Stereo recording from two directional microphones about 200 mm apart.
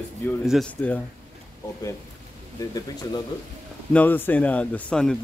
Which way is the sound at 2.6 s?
20° left (ahead or behind).